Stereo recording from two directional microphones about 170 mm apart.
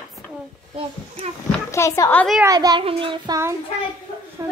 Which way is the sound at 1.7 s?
15° left (ahead or behind).